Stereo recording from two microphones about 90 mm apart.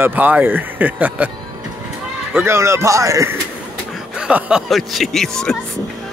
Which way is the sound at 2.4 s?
30° right (ahead or behind).